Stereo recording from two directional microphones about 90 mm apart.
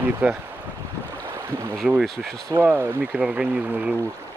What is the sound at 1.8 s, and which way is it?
Speech, 5° right (ahead or behind).